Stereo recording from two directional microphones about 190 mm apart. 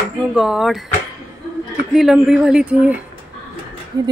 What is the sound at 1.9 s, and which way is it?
Speech, centre (ahead or behind).